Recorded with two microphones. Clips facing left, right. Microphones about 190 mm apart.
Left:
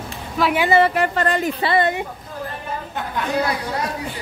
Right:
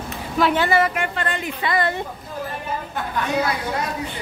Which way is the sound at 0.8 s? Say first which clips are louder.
Left 5 dB; 35° left (ahead or behind).